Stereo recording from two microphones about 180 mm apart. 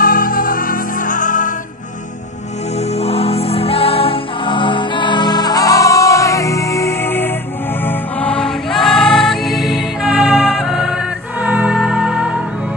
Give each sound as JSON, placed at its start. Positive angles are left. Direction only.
{"t": 0.0, "sound": "music", "side_deg": 50}
{"t": 3.0, "sound": "music", "side_deg": 35}